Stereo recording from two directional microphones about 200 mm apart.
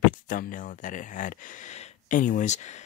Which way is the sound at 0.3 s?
40° left (ahead or behind).